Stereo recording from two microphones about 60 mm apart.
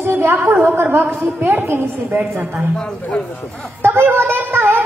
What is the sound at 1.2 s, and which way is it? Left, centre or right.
Speech, right.